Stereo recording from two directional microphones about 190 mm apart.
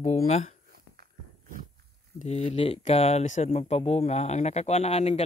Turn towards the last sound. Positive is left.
turn(degrees=35)  # may be behind; listen again after turning